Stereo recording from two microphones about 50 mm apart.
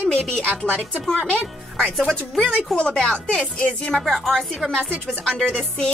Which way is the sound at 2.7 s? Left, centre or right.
Centre.